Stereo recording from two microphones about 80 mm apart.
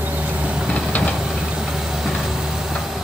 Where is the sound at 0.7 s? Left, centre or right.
Centre.